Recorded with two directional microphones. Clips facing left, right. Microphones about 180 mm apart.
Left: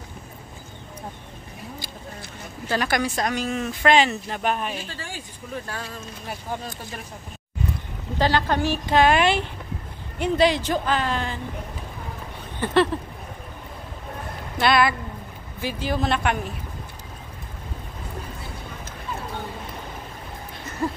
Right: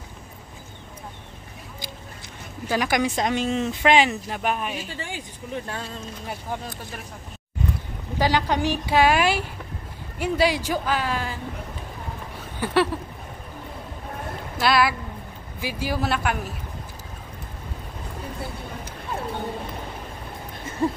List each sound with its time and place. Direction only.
2.7 s speech: 15° right (ahead or behind)
3.8 s a woman's voice: 15° right (ahead or behind)
4.9 s speech: 20° right (ahead or behind)
8.2 s a woman's voice: 15° right (ahead or behind)
12.5 s a sound: 10° right (ahead or behind)
14.6 s a man's voice: 5° right (ahead or behind)
20.8 s hoot: 25° right (ahead or behind)